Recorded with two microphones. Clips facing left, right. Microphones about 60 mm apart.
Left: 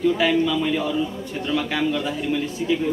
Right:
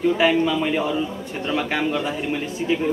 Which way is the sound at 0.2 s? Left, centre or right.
Right.